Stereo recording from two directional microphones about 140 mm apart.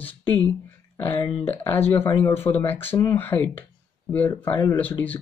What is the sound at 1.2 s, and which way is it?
Speech, 45° left (ahead or behind).